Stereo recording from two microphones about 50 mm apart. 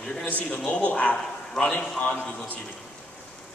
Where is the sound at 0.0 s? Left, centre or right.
Centre.